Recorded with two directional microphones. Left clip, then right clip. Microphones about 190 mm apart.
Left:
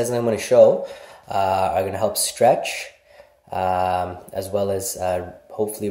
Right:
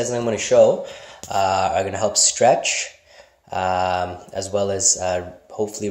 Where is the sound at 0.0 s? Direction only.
Centre (ahead or behind).